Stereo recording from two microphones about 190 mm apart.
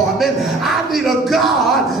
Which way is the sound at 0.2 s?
Centre (ahead or behind).